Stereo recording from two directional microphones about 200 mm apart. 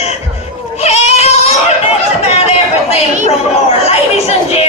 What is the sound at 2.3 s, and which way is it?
Chatter, 30° left (ahead or behind).